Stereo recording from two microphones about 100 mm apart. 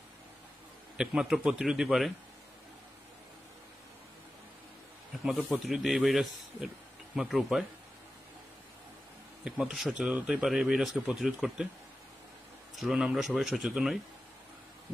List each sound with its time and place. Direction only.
0.9 s speech: 5° right (ahead or behind)
5.2 s speech: centre (ahead or behind)
9.4 s speech: 5° right (ahead or behind)
12.8 s speech: 5° right (ahead or behind)